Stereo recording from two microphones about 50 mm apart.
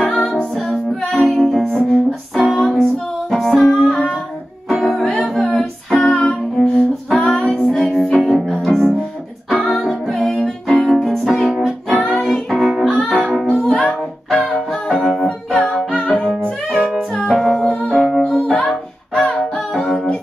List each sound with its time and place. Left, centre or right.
0.0 s music: left
2.3 s music: centre
5.2 s music: centre
6.2 s music: centre
15.9 s music: left
16.7 s music: centre
17.1 s music: centre
17.4 s music: centre
18.6 s music: centre